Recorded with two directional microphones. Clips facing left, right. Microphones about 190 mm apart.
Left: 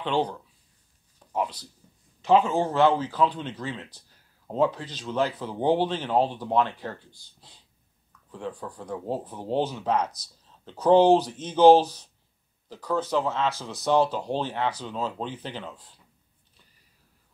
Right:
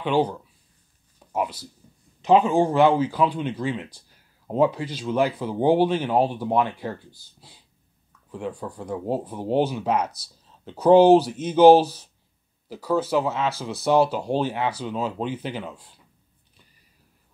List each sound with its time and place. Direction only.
0.0 s speech: 10° right (ahead or behind)